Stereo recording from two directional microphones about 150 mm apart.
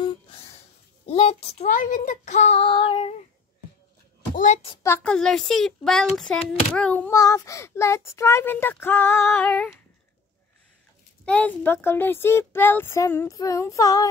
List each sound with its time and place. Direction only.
1.0 s a child's voice: 40° left (ahead or behind)
1.7 s child singing: 60° left (ahead or behind); by 3.2 s 35° left (ahead or behind)
4.8 s speech: 10° left (ahead or behind)
7.1 s speech: 20° left (ahead or behind); by 9.8 s 5° left (ahead or behind)
11.2 s speech: 10° left (ahead or behind)